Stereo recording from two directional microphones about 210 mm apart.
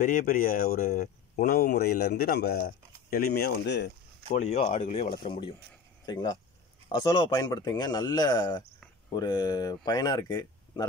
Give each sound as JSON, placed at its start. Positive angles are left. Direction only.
{"t": 0.0, "sound": "speech", "side_deg": 40}
{"t": 4.4, "sound": "speech", "side_deg": 30}
{"t": 6.9, "sound": "speech", "side_deg": 20}